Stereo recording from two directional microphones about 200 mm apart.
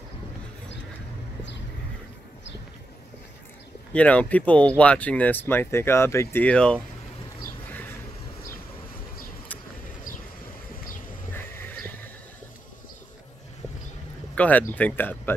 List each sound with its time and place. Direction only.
3.9 s speech: 5° left (ahead or behind)
14.3 s speech: 5° left (ahead or behind)